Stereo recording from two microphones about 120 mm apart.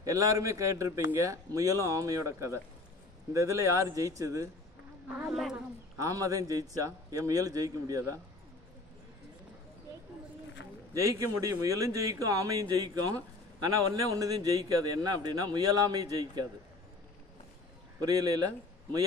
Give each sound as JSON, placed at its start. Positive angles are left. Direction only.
{"t": 0.0, "sound": "a man's voice", "side_deg": -30}
{"t": 5.3, "sound": "speech", "side_deg": -5}
{"t": 5.9, "sound": "a man's voice", "side_deg": -30}
{"t": 10.9, "sound": "a man's voice", "side_deg": -25}
{"t": 18.0, "sound": "a man's voice", "side_deg": -30}